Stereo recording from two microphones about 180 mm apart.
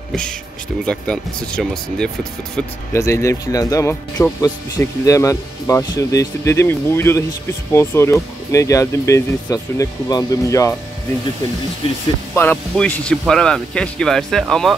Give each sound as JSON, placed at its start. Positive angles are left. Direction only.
{"t": 0.8, "sound": "speech", "side_deg": 5}
{"t": 2.5, "sound": "speech", "side_deg": 15}
{"t": 12.4, "sound": "speech", "side_deg": 10}